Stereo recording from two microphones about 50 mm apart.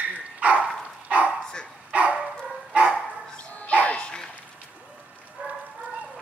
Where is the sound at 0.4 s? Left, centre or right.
Right.